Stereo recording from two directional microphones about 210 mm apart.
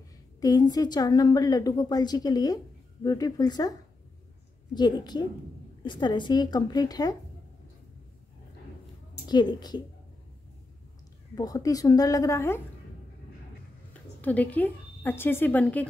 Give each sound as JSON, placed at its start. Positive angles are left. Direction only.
{"t": 0.4, "sound": "a woman's voice", "side_deg": 20}
{"t": 4.7, "sound": "a woman's voice", "side_deg": 20}
{"t": 9.3, "sound": "a woman's voice", "side_deg": 20}
{"t": 11.3, "sound": "a woman's voice", "side_deg": 15}
{"t": 14.2, "sound": "a woman's voice", "side_deg": 5}